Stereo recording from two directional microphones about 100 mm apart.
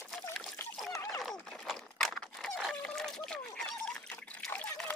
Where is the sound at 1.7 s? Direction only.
Centre (ahead or behind).